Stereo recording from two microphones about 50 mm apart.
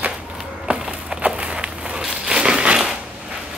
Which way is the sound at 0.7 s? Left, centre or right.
Right.